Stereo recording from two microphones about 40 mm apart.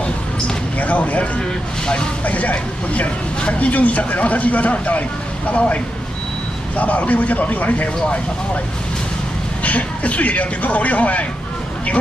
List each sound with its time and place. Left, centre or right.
0.7 s speech: left
6.8 s speech: left
9.6 s speech: left